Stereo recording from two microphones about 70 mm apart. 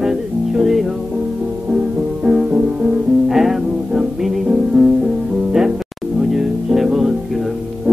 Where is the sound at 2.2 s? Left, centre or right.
Centre.